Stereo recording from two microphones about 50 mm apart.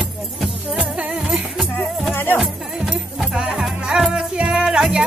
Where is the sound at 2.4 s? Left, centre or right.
Centre.